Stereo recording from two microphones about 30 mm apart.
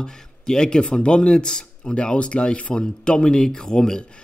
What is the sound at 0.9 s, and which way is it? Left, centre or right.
Speech, left.